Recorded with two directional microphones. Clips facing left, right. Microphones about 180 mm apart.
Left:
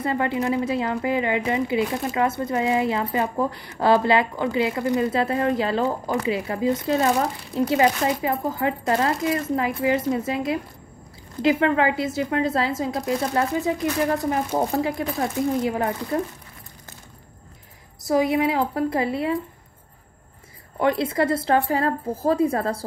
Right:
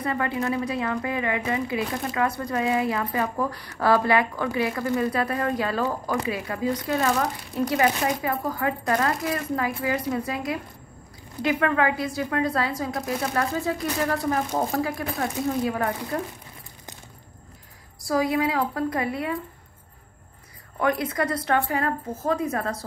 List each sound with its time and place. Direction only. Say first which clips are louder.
0.0 s a woman's voice: left 3 dB; 25° left (ahead or behind)
18.0 s a woman's voice: left 3 dB; 20° left (ahead or behind)
20.8 s a woman's voice: left 3 dB; 25° left (ahead or behind)